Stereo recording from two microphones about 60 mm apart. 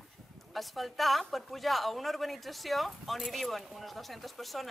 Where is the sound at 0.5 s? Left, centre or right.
Centre.